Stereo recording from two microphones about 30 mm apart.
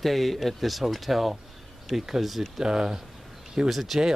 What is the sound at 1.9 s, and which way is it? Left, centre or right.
Speech, centre.